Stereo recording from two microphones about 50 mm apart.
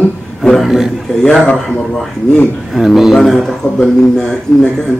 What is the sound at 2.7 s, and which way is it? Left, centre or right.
Speech, centre.